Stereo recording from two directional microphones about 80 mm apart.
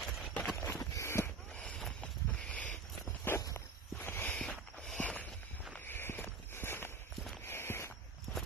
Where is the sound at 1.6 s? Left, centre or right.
Centre.